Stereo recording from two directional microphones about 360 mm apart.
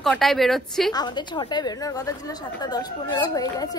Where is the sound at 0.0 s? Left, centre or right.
Centre.